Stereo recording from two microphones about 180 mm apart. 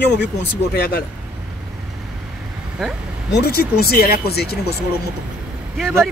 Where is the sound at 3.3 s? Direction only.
60° left (ahead or behind).